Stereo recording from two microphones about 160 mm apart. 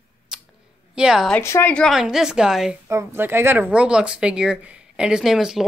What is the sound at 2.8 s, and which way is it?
A woman's voice, 15° right (ahead or behind).